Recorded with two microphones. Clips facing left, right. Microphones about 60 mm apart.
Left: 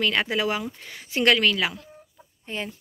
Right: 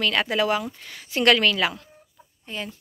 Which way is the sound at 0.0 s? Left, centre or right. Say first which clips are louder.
Right 1 dB; centre.